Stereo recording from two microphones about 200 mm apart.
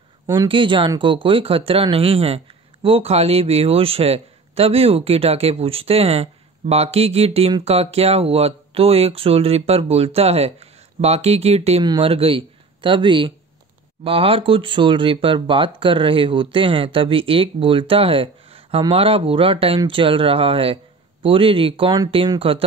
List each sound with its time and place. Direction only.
0.3 s speech: 25° right (ahead or behind)